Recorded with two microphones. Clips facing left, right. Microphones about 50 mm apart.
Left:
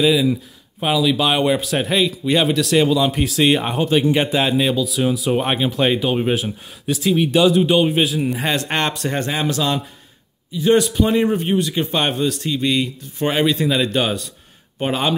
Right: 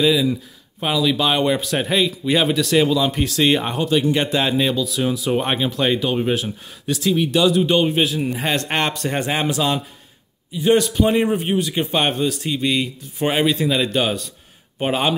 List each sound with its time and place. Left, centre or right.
0.0 s speech: centre
3.7 s speech: left
7.6 s a man's voice: centre
14.8 s speech: centre